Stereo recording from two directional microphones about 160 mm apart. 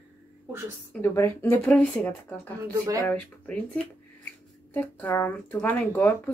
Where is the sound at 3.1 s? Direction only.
10° left (ahead or behind).